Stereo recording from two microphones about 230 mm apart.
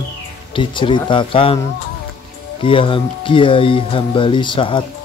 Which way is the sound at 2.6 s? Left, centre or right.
Left.